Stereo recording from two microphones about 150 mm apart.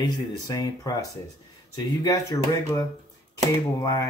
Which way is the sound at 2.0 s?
25° left (ahead or behind).